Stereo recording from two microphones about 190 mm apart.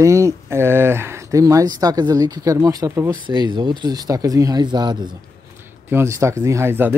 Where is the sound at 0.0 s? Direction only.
15° right (ahead or behind).